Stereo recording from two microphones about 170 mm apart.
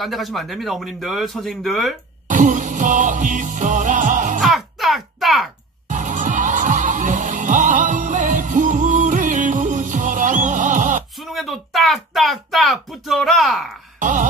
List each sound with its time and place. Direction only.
0.0 s speech: centre (ahead or behind)
2.2 s music: 45° right (ahead or behind)
4.4 s music: centre (ahead or behind)
5.9 s music: 45° right (ahead or behind)
11.2 s a sound: centre (ahead or behind)
13.9 s a sound: 50° right (ahead or behind)